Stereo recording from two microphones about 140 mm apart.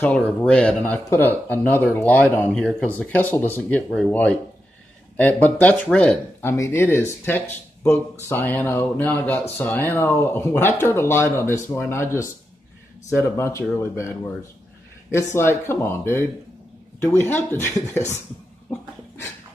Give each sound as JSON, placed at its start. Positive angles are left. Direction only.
{"t": 0.4, "sound": "speech", "side_deg": 10}
{"t": 6.5, "sound": "speech", "side_deg": 20}
{"t": 13.4, "sound": "speech", "side_deg": 20}
{"t": 18.7, "sound": "dog", "side_deg": 20}